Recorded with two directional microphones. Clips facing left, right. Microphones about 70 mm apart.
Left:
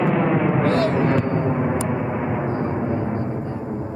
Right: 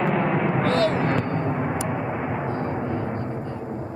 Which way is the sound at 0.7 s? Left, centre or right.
Left.